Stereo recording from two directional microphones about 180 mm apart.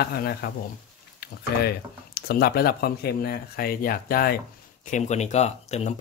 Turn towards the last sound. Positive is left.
turn(degrees=35)  # may be behind; listen again after turning